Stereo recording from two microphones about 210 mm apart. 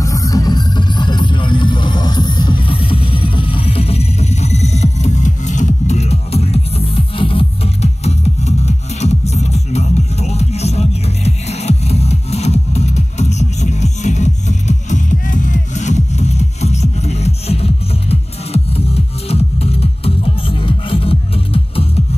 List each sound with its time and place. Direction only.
0.0 s music: 15° left (ahead or behind)